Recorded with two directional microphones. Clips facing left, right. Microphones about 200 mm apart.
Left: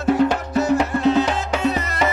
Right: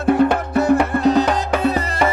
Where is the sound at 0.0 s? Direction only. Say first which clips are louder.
Right 2 dB; 55° right (ahead or behind).